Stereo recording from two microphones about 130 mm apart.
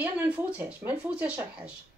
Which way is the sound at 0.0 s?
15° right (ahead or behind).